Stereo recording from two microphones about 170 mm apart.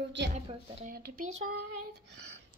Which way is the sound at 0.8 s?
60° right (ahead or behind).